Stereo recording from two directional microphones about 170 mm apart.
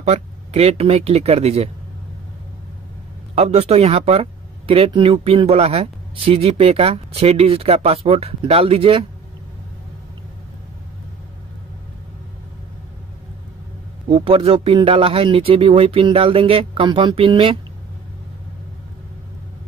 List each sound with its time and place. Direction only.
0.0 s speech: 40° right (ahead or behind)
3.3 s speech: 40° right (ahead or behind)
14.0 s speech: 30° right (ahead or behind)